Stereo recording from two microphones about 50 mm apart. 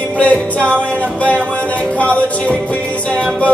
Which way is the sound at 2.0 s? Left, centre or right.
Left.